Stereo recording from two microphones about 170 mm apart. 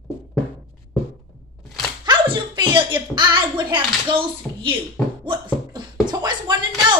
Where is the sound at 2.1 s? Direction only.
25° right (ahead or behind).